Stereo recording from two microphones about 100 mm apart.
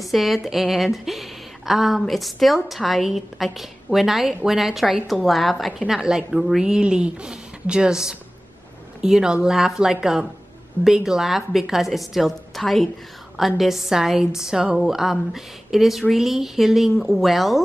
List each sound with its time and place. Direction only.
0.0 s a woman's voice: centre (ahead or behind)